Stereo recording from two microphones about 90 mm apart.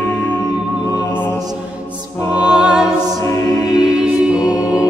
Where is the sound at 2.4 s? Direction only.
10° right (ahead or behind).